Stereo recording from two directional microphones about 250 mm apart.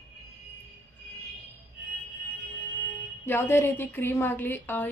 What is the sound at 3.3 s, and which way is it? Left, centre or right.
A woman's voice, centre.